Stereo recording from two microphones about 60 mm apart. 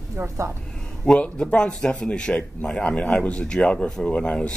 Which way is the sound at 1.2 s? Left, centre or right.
Centre.